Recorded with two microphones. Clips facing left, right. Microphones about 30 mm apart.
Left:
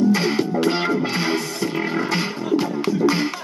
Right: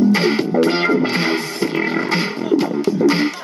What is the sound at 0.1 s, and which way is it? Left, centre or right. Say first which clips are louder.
Music: right 3 dB; right.